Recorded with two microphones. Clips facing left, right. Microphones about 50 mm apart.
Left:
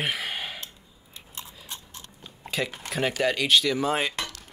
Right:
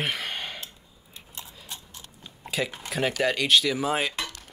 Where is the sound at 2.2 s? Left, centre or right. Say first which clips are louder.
Even; centre.